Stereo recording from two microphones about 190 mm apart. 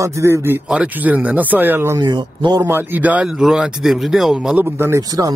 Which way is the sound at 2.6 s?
10° right (ahead or behind).